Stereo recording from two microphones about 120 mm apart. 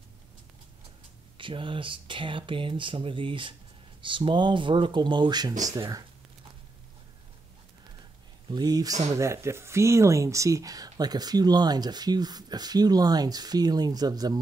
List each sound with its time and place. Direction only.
1.4 s speech: 45° right (ahead or behind)
8.5 s speech: 35° right (ahead or behind)